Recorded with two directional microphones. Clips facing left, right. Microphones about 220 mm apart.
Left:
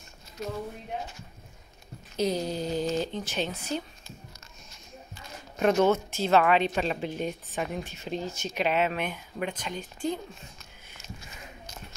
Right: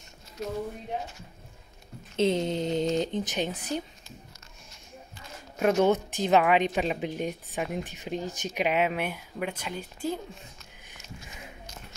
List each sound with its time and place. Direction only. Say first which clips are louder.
2.1 s speech: right 3 dB; 25° right (ahead or behind)
5.6 s speech: even; 10° right (ahead or behind)